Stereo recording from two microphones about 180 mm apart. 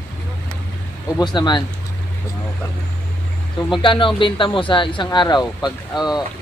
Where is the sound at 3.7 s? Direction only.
25° left (ahead or behind).